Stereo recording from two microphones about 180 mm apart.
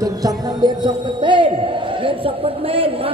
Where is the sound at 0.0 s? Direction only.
20° right (ahead or behind).